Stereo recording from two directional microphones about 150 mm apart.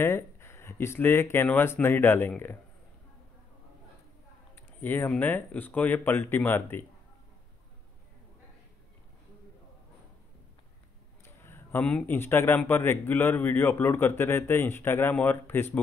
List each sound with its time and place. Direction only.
0.0 s speech: 15° left (ahead or behind)
4.6 s speech: 15° left (ahead or behind)
11.2 s speech: 15° left (ahead or behind)